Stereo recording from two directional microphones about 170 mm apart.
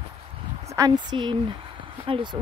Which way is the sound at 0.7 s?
25° right (ahead or behind).